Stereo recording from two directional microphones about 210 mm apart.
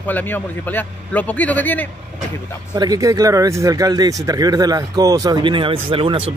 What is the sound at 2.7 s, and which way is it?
Speech, 20° right (ahead or behind).